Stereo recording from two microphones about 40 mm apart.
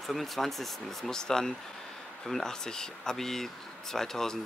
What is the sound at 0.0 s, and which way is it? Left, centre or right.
Speech, centre.